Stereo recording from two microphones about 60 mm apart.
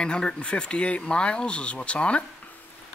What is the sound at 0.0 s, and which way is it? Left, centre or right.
Speech, centre.